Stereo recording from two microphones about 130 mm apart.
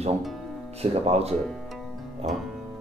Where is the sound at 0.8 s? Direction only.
50° right (ahead or behind).